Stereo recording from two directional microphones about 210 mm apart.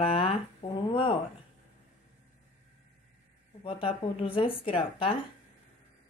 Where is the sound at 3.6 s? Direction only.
25° left (ahead or behind).